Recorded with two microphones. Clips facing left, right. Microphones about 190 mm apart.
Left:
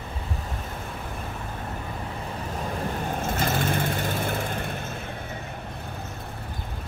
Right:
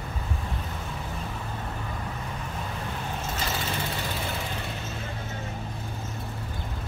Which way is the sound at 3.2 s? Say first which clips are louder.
Left 7 dB; 55° left (ahead or behind).